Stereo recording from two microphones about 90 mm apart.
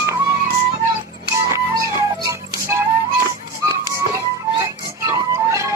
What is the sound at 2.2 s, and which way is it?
Music, 30° right (ahead or behind).